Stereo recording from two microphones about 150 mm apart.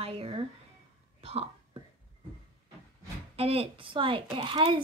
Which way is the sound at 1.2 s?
40° right (ahead or behind).